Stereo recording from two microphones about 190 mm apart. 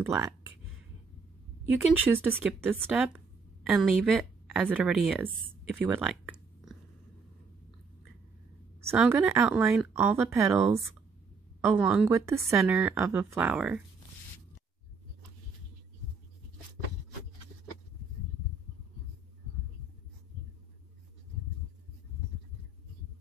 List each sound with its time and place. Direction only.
0.0 s speech: 10° right (ahead or behind)
2.0 s speech: 10° right (ahead or behind)
5.8 s a sound: 5° right (ahead or behind)
8.8 s speech: 10° right (ahead or behind)